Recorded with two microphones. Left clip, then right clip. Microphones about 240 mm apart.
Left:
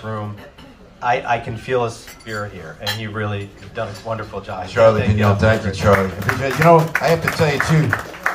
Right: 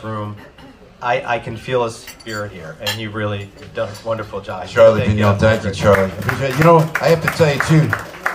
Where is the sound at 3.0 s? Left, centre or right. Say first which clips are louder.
Right 2 dB; right.